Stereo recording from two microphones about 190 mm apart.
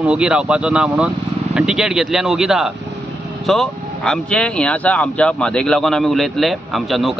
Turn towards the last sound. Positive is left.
turn(degrees=0)  # may be behind; listen again after turning